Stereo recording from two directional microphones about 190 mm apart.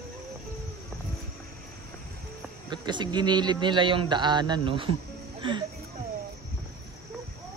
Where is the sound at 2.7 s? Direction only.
25° right (ahead or behind).